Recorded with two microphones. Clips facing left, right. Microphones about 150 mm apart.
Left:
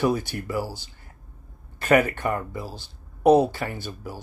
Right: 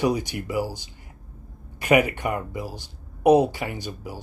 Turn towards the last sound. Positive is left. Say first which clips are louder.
# right 1 dB
turn(degrees=-15)  # may be behind; listen again after turning